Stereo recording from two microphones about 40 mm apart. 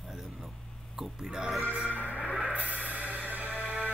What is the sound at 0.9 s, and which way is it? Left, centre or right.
Speech, centre.